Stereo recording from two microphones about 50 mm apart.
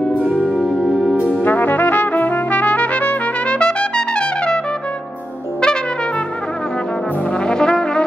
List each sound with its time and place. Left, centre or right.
0.2 s music: right; by 1.1 s centre
1.4 s trumpet: left; by 4.6 s centre
7.3 s brass instrument: centre